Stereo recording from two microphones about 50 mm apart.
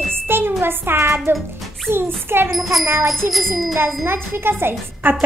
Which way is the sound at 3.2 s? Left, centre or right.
Right.